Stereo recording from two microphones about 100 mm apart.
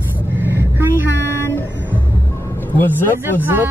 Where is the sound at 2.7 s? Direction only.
20° left (ahead or behind).